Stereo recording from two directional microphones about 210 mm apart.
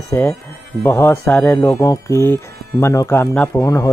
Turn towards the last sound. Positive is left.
turn(degrees=15)  # may be behind; listen again after turning